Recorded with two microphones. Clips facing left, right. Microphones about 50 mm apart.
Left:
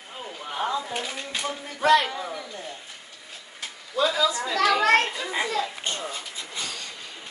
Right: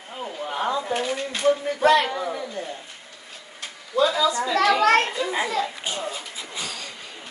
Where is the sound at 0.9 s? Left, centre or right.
Centre.